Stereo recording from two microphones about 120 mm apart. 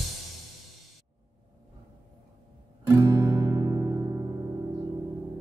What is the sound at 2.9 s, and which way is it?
Music, 25° right (ahead or behind).